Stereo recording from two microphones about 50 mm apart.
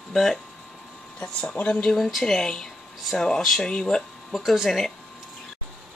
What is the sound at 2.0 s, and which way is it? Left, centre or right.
Speech, centre.